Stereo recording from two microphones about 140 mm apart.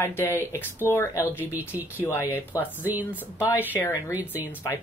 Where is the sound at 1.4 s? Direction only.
15° right (ahead or behind).